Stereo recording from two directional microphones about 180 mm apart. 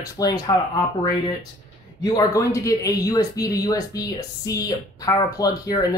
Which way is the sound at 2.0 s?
20° left (ahead or behind).